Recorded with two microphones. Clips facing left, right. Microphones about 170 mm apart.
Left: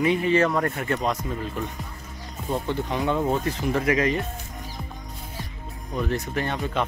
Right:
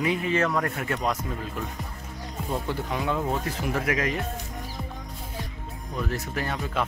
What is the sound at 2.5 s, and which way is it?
Speech, 5° right (ahead or behind).